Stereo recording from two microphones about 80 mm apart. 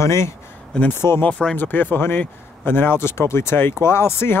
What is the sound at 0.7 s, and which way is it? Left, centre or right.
Speech, centre.